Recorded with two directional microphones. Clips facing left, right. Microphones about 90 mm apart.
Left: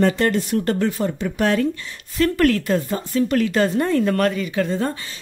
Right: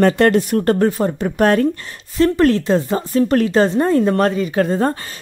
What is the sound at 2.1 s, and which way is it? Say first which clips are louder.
Speech: right 4 dB; 25° right (ahead or behind).